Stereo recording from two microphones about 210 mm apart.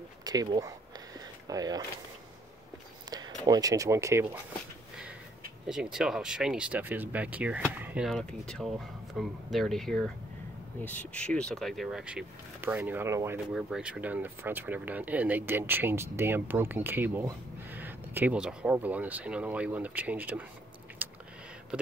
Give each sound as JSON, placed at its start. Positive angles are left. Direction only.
{"t": 0.2, "sound": "speech", "side_deg": -20}
{"t": 3.4, "sound": "speech", "side_deg": -15}
{"t": 5.7, "sound": "speech", "side_deg": -5}
{"t": 13.5, "sound": "speech", "side_deg": 0}
{"t": 21.0, "sound": "a sound", "side_deg": -10}